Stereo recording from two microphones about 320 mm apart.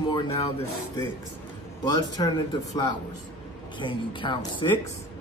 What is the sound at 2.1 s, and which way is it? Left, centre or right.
A man's voice, centre.